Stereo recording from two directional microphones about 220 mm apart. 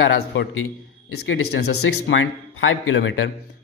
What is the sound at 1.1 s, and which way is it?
Speech, 80° left.